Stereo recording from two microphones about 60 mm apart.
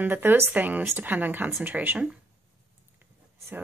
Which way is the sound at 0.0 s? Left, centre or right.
Right.